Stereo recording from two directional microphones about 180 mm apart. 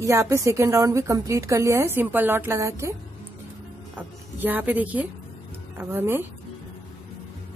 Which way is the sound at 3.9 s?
10° right (ahead or behind).